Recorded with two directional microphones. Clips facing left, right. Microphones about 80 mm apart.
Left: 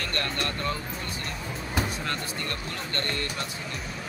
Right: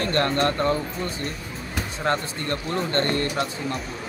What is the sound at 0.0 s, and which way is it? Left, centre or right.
Speech, right.